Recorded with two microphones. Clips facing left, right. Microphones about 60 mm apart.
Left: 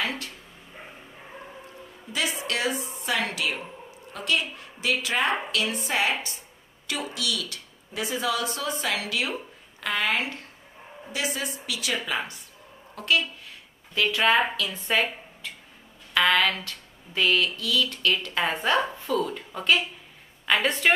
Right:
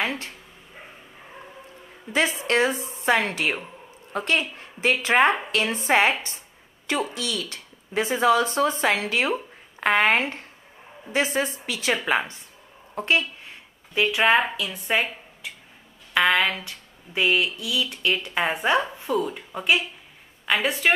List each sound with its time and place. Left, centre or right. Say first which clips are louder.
0.0 s dog: right 3 dB; right
2.4 s a woman's voice: right 6 dB; right
12.9 s a sound: right 2 dB; right
14.6 s a woman's voice: right 1 dB; centre